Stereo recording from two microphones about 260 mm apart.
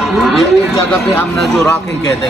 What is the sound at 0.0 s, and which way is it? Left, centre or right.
Speech, centre.